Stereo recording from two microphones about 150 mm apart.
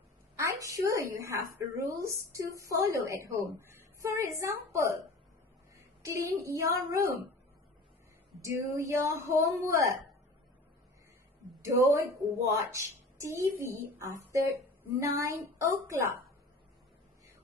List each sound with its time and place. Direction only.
0.4 s a woman's voice: 20° right (ahead or behind)
6.0 s a woman's voice: 20° right (ahead or behind)
8.4 s a woman's voice: 20° right (ahead or behind)
11.6 s a woman's voice: 20° right (ahead or behind)